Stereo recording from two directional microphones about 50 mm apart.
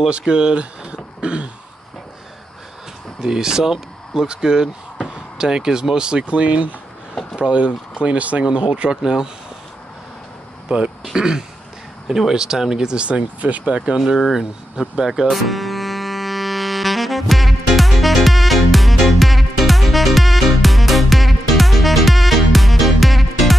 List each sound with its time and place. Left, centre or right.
0.1 s speech: centre
3.2 s speech: centre
11.1 s speech: centre
13.9 s speech: centre
14.4 s music: centre